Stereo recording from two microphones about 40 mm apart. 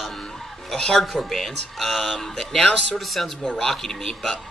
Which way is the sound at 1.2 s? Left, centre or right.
Centre.